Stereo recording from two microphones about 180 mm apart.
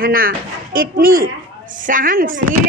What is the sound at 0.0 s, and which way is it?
Speech, 55° right (ahead or behind).